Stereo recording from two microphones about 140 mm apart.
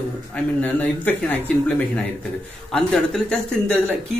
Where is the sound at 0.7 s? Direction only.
10° left (ahead or behind).